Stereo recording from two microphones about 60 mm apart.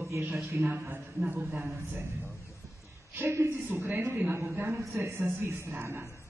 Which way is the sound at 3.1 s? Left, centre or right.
Right.